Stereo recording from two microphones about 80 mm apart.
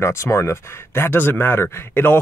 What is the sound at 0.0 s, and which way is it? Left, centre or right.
Speech, left.